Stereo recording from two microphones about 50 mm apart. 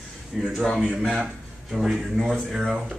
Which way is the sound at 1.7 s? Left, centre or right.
Centre.